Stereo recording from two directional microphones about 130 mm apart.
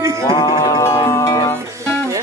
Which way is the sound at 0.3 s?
30° left (ahead or behind).